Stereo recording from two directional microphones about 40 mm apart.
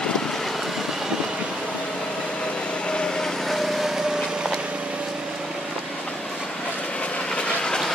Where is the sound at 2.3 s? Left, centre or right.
Left; by 4.6 s centre.